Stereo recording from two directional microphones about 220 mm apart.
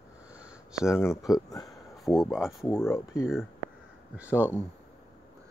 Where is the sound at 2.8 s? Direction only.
15° left (ahead or behind).